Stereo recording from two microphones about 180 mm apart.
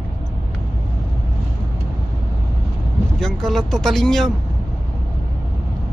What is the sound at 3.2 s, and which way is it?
Speech, centre (ahead or behind).